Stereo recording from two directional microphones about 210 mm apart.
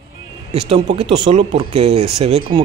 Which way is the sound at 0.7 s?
25° right (ahead or behind).